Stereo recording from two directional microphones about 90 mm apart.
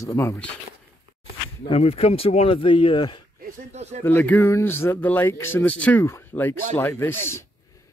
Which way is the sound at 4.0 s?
20° left (ahead or behind).